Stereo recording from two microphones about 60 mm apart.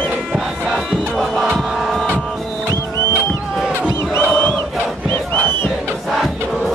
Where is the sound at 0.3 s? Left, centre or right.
Centre.